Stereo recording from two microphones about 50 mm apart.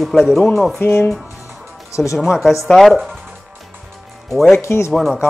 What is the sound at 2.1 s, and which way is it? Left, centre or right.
Speech, centre.